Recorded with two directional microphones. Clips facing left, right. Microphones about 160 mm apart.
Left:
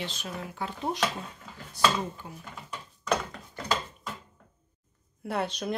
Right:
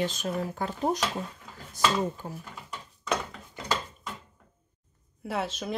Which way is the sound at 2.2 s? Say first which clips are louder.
Right 5 dB; 50° right (ahead or behind).